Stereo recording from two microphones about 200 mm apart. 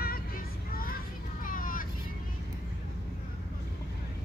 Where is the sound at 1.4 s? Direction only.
45° left (ahead or behind).